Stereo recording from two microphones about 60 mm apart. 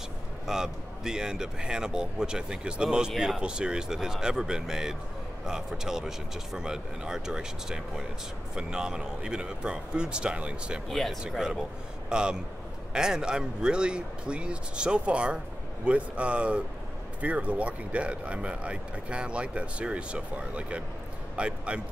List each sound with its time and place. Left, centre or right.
0.5 s speech: centre
10.9 s speech: centre
11.2 s speech: centre